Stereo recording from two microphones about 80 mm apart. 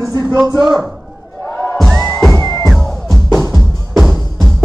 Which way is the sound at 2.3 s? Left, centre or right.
Left.